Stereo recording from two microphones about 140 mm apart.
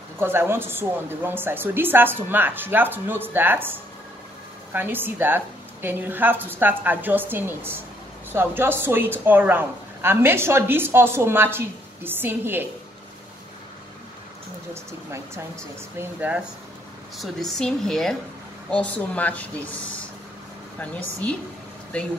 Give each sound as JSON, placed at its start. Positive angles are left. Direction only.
{"t": 0.2, "sound": "speech", "side_deg": -15}
{"t": 4.7, "sound": "speech", "side_deg": -15}
{"t": 14.7, "sound": "speech", "side_deg": -20}
{"t": 17.2, "sound": "speech", "side_deg": 5}
{"t": 20.8, "sound": "speech", "side_deg": 10}